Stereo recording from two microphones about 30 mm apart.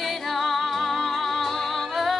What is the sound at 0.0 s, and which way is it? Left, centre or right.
Music, centre.